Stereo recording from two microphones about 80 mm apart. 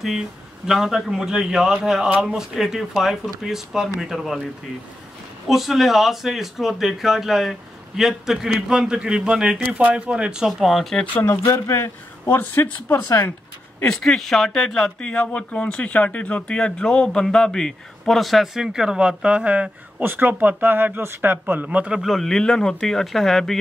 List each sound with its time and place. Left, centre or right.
0.7 s speech: centre
5.5 s speech: centre
11.4 s speech: left
13.8 s speech: centre
22.0 s speech: centre